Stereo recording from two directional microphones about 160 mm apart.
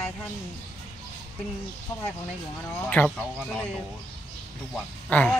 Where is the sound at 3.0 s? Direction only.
15° left (ahead or behind).